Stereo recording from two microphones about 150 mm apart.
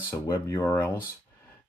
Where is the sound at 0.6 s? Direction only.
15° left (ahead or behind).